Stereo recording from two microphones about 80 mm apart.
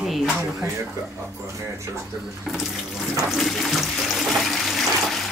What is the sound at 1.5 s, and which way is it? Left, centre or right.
Speech, right.